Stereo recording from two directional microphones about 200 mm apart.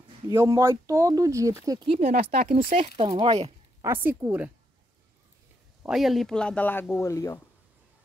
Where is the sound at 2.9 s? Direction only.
25° right (ahead or behind).